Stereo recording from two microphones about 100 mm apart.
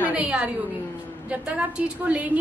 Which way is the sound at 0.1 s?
10° right (ahead or behind).